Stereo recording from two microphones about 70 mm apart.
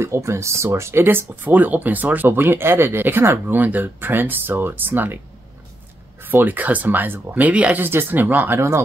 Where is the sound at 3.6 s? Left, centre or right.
Right.